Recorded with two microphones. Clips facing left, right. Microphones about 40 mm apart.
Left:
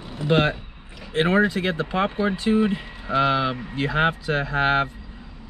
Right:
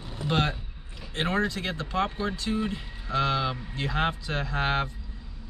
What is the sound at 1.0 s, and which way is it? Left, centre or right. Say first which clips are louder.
Speech: left 8 dB; left.